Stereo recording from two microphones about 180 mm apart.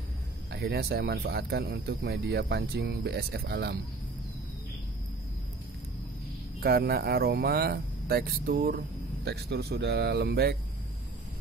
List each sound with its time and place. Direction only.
0.5 s speech: 65° right (ahead or behind)
6.6 s speech: 60° right (ahead or behind)